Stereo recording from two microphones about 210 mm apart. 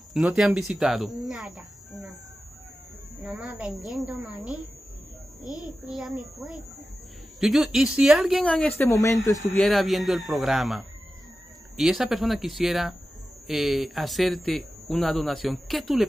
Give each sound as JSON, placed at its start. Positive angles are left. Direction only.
{"t": 0.3, "sound": "a man's voice", "side_deg": 0}
{"t": 3.2, "sound": "a man's voice", "side_deg": 0}
{"t": 5.4, "sound": "a child's voice", "side_deg": 15}
{"t": 5.7, "sound": "a man's voice", "side_deg": 0}
{"t": 9.5, "sound": "a man's voice", "side_deg": 0}